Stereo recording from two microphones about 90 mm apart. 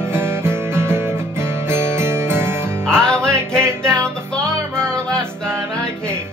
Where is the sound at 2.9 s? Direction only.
10° left (ahead or behind).